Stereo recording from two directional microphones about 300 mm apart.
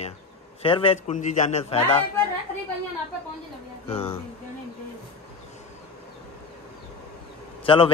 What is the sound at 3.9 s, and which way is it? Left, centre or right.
Speech, centre.